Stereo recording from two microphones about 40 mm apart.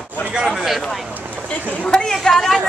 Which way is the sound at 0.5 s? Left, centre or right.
Centre.